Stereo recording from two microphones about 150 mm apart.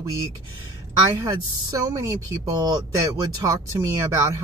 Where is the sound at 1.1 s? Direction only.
25° right (ahead or behind).